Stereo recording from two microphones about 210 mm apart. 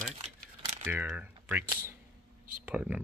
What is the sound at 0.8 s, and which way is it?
Speech, 5° right (ahead or behind).